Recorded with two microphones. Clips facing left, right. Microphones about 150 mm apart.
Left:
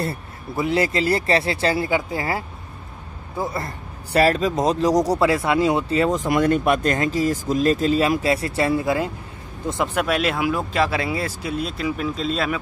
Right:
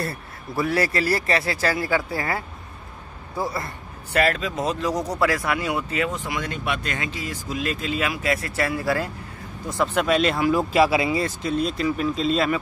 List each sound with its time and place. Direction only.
0.0 s speech: 25° left (ahead or behind)
3.5 s a man's voice: 35° left (ahead or behind); by 9.1 s 20° left (ahead or behind)
9.9 s speech: 5° left (ahead or behind)
11.1 s speech: 5° left (ahead or behind)